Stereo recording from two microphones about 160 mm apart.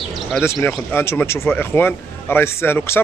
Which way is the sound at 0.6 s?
15° left (ahead or behind).